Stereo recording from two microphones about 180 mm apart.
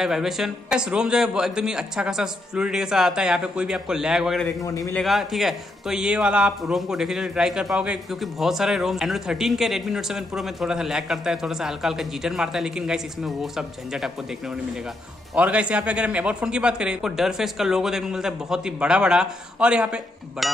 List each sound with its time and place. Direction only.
0.0 s a man's voice: centre (ahead or behind)
4.5 s a man's voice: 20° left (ahead or behind)
4.9 s a man's voice: centre (ahead or behind)
15.3 s a man's voice: 5° right (ahead or behind)